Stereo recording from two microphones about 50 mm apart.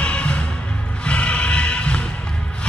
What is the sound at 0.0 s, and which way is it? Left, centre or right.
Music, left.